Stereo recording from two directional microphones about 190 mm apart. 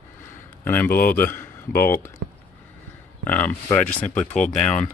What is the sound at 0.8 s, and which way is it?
Speech, 50° left (ahead or behind).